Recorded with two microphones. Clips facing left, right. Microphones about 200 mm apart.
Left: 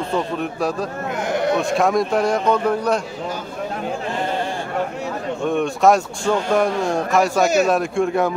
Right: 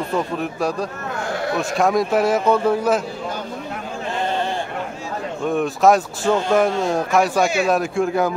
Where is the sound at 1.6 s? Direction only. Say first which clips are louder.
Left 1 dB; centre (ahead or behind).